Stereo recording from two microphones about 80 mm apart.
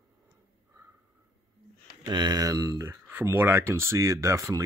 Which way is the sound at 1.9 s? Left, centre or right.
Right.